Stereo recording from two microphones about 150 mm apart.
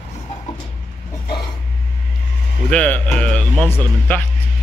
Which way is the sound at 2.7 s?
10° left (ahead or behind).